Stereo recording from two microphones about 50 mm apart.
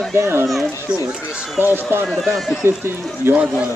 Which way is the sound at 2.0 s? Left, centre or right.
Centre.